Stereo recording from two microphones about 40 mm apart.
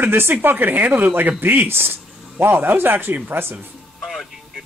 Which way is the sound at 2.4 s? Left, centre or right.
Right.